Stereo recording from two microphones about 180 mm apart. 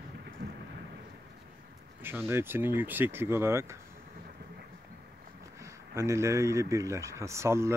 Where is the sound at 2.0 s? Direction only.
15° right (ahead or behind).